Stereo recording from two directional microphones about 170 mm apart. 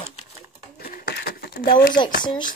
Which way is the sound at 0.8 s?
65° left (ahead or behind).